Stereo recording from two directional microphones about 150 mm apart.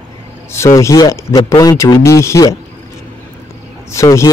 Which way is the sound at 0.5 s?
20° left (ahead or behind).